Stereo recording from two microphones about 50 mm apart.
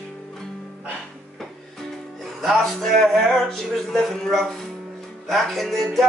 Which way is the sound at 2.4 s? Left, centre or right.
Centre.